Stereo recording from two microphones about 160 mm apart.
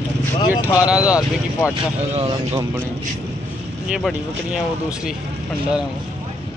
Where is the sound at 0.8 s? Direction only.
5° right (ahead or behind).